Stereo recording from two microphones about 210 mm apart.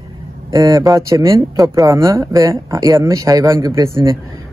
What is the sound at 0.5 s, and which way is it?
Speech, 15° right (ahead or behind).